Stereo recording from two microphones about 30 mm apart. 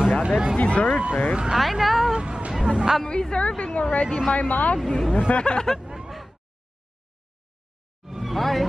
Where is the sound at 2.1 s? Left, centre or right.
Right.